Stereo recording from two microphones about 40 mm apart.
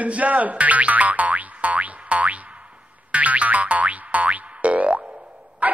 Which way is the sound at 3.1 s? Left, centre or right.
Right.